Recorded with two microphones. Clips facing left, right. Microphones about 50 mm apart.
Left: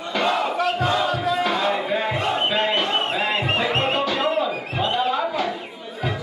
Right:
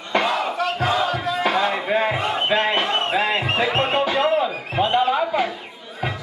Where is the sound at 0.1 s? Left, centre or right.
Centre.